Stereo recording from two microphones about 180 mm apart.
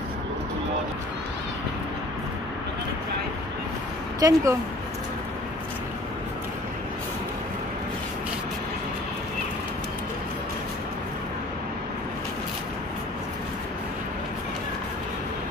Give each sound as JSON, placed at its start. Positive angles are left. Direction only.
{"t": 4.2, "sound": "speech", "side_deg": -20}